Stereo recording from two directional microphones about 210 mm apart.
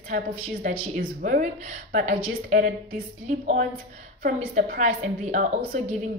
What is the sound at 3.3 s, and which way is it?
Speech, 40° right (ahead or behind).